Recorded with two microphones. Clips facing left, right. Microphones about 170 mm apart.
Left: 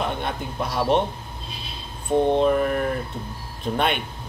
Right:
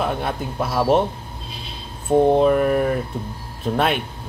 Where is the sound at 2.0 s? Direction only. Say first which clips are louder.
Right 4 dB; 35° right (ahead or behind).